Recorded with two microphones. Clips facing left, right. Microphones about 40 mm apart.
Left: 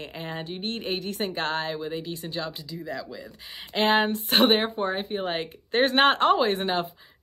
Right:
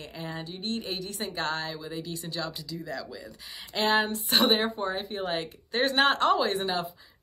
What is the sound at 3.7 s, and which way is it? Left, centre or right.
A woman's voice, left.